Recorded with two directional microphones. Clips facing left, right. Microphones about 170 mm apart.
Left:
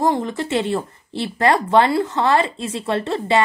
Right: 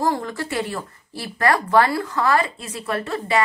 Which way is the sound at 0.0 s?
20° left (ahead or behind).